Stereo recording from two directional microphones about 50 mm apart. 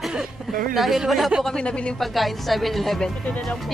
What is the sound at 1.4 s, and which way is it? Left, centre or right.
Speech, centre.